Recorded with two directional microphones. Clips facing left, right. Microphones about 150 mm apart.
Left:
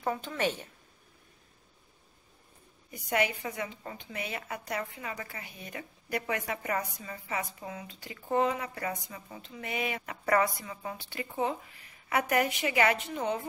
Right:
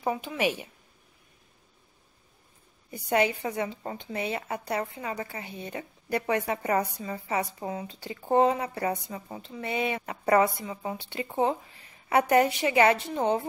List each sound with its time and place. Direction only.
0.0 s speech: 10° right (ahead or behind)
2.9 s a woman's voice: 30° right (ahead or behind)